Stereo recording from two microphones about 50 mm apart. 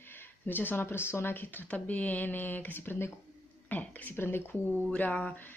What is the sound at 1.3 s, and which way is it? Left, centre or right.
Speech, left.